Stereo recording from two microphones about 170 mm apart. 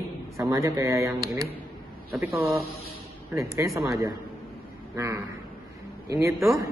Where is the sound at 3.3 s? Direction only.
15° right (ahead or behind).